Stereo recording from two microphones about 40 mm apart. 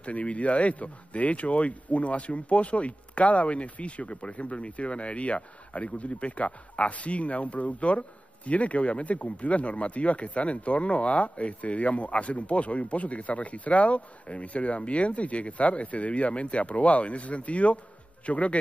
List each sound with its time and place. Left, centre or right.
0.0 s speech: left